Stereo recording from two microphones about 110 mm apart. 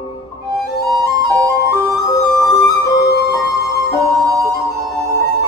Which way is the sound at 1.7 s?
30° left (ahead or behind).